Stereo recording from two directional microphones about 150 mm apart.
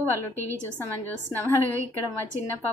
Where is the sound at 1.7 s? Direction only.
20° right (ahead or behind).